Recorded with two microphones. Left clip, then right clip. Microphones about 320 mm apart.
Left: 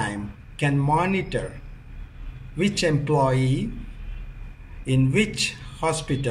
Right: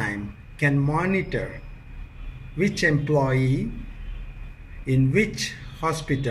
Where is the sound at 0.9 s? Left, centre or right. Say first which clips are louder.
Left 1 dB; centre.